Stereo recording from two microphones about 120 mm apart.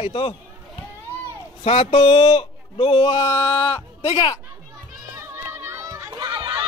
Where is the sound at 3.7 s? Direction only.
50° left (ahead or behind).